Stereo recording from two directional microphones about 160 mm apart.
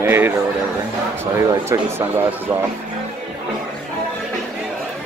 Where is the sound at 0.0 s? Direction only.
15° right (ahead or behind).